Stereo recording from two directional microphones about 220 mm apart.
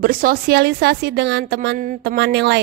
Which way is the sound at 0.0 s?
40° right (ahead or behind).